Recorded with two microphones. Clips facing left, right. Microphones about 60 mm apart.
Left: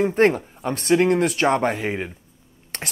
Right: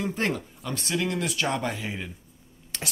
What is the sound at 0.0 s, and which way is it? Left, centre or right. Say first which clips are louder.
Speech: left 10 dB; left.